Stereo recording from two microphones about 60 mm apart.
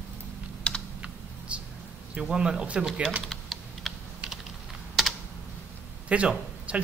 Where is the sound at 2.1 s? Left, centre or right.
Centre.